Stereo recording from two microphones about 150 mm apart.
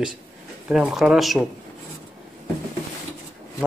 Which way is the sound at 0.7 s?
5° right (ahead or behind).